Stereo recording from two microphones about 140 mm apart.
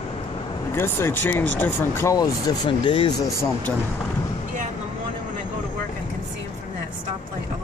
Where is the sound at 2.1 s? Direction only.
30° left (ahead or behind).